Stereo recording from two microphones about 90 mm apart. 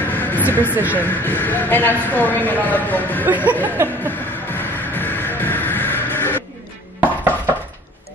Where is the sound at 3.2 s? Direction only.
20° right (ahead or behind).